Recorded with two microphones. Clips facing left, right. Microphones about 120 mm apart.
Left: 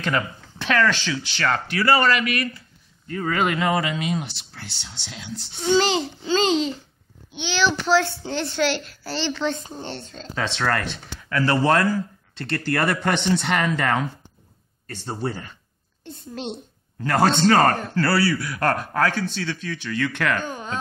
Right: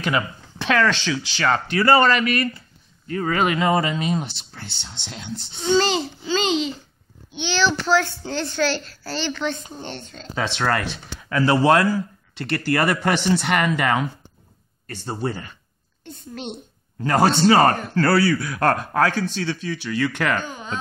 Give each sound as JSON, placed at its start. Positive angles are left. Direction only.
{"t": 0.0, "sound": "speech", "side_deg": -15}
{"t": 3.3, "sound": "speech", "side_deg": -20}
{"t": 4.3, "sound": "speech", "side_deg": -25}
{"t": 5.8, "sound": "a child's voice", "side_deg": 20}
{"t": 7.3, "sound": "a child's voice", "side_deg": 10}
{"t": 10.3, "sound": "a man's voice", "side_deg": -10}
{"t": 11.5, "sound": "a man's voice", "side_deg": -10}
{"t": 16.0, "sound": "a sound", "side_deg": 30}
{"t": 17.0, "sound": "a man's voice", "side_deg": -15}